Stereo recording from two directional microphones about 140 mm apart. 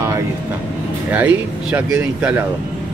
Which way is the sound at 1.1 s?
10° right (ahead or behind).